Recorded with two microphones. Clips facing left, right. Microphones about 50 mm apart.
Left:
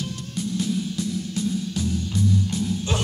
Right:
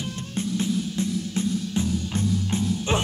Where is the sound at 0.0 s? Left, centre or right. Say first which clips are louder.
Even; right.